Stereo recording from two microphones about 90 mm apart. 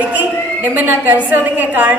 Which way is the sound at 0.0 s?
20° right (ahead or behind).